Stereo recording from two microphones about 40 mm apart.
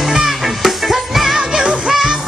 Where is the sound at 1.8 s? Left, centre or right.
Centre.